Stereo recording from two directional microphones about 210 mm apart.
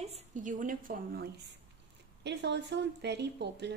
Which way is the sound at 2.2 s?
55° right (ahead or behind).